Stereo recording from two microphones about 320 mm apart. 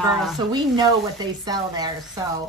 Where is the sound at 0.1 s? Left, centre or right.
Centre.